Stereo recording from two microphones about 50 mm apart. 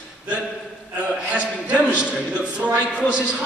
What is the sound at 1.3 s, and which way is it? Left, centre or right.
A man's voice, right.